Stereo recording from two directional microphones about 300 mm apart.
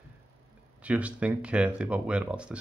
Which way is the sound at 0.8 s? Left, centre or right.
Centre.